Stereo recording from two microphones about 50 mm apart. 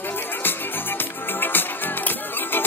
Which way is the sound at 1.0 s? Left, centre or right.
Left.